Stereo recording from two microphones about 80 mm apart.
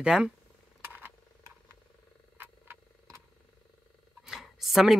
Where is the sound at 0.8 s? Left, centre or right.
Right.